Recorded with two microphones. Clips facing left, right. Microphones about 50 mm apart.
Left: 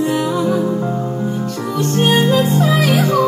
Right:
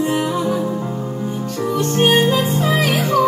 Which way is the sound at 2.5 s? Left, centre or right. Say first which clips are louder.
Left 3 dB; right.